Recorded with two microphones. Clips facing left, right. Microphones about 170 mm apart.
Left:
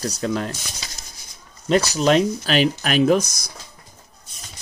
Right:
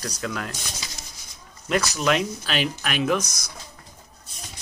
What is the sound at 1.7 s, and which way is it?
Speech, 30° left (ahead or behind).